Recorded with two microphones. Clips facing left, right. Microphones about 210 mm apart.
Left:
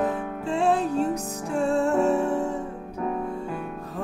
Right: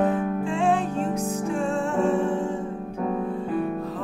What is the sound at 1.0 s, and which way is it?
Music, 35° right (ahead or behind).